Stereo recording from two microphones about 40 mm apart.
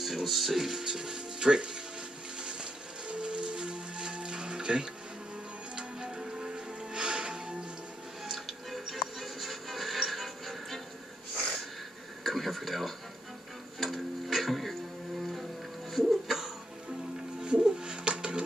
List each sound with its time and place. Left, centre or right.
0.0 s speech: centre; by 1.8 s right
2.4 s music: right
8.5 s music: centre
12.2 s radio: centre
13.7 s a sound: centre
16.0 s music: centre
17.4 s bird: right